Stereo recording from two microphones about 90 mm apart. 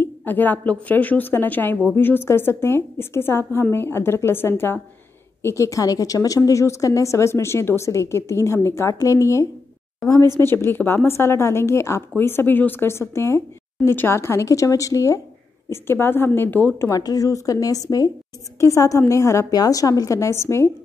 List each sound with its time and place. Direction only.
0.0 s a woman's voice: 20° left (ahead or behind); by 15.1 s 35° left (ahead or behind)
15.7 s speech: 25° left (ahead or behind)
16.9 s a woman's voice: 45° left (ahead or behind)
19.5 s a woman's voice: 45° left (ahead or behind)